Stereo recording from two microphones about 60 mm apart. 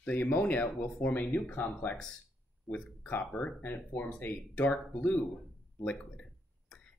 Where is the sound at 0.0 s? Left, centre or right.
Left.